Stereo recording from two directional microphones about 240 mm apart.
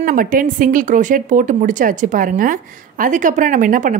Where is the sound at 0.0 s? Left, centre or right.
Right.